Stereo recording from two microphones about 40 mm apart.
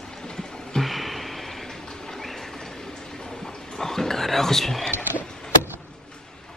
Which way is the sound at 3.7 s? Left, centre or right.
Centre.